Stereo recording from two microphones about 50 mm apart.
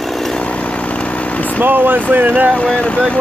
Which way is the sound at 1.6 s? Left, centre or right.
Right.